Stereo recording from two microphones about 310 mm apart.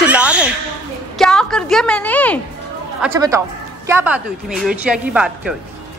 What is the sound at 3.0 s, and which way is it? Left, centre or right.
Speech, centre.